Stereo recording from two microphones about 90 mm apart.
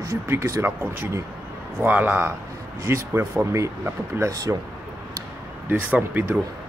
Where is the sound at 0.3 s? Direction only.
30° right (ahead or behind).